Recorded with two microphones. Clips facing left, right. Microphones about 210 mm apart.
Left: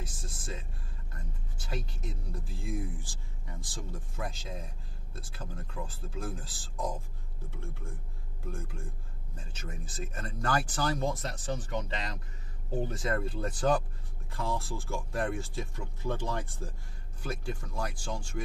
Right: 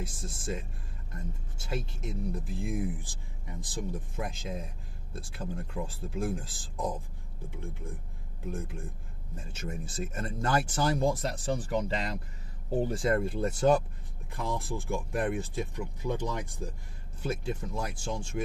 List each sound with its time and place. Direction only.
0.0 s speech: 25° right (ahead or behind)
1.6 s speech: 25° right (ahead or behind)
12.8 s speech: 30° right (ahead or behind)